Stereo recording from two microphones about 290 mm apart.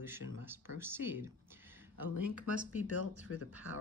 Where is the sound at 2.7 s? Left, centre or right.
Left.